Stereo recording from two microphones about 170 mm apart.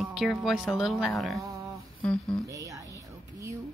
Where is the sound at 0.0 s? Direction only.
Centre (ahead or behind).